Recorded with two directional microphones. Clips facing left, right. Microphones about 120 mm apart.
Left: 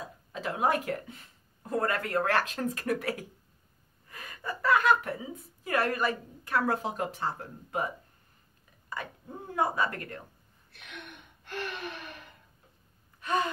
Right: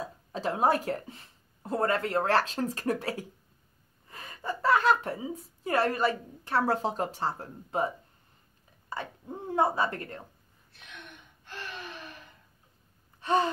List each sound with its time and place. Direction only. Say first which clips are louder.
0.0 s a sound: right 4 dB; 35° right (ahead or behind)
1.7 s a woman's voice: right 2 dB; 25° right (ahead or behind)
8.8 s a sound: right 2 dB; 30° right (ahead or behind)
9.6 s speech: right 2 dB; 25° right (ahead or behind)
11.4 s gasp: left 5 dB; 60° left (ahead or behind)
13.2 s gasp: right 3 dB; 30° right (ahead or behind)